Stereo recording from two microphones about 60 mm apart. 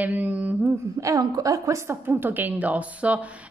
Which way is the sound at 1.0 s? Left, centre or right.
Right.